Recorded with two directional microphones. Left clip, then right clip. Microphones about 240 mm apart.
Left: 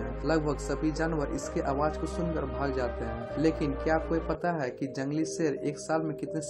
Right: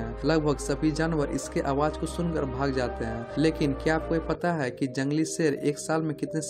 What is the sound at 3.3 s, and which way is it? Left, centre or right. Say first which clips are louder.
Speech: right 3 dB; right.